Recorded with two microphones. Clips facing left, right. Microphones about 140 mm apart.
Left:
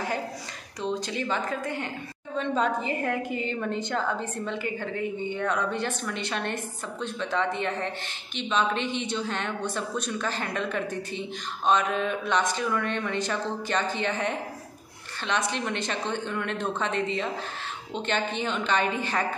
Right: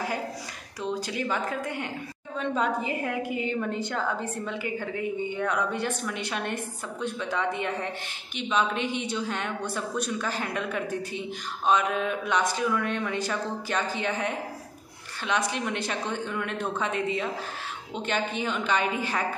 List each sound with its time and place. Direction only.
0.8 s a woman's voice: 10° right (ahead or behind)